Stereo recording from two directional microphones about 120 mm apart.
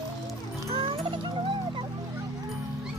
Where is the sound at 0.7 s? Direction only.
45° right (ahead or behind).